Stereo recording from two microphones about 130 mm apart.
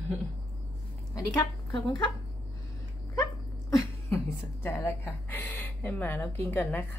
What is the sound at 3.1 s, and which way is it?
A woman's voice, 25° left (ahead or behind).